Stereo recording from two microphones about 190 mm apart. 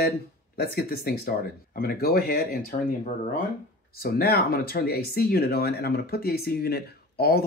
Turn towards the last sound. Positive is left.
turn(degrees=55)  # may be behind; listen again after turning